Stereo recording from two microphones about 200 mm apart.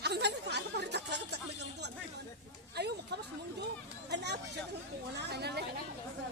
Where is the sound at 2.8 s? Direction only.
55° right (ahead or behind).